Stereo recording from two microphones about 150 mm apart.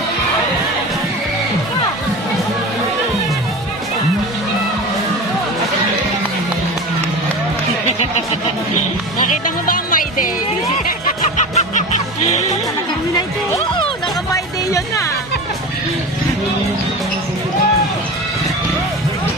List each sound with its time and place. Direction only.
9.3 s music: 65° left (ahead or behind)
11.3 s music: 55° left (ahead or behind)
14.3 s music: 20° left (ahead or behind)